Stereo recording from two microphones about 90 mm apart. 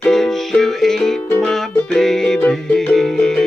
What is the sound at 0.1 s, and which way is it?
Music, 5° left (ahead or behind).